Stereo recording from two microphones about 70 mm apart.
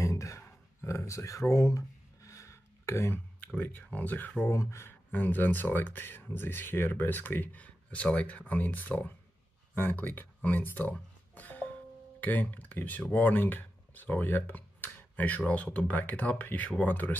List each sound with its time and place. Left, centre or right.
0.0 s a sound: left
3.3 s speech: left
4.5 s speech: left
5.1 s speech: left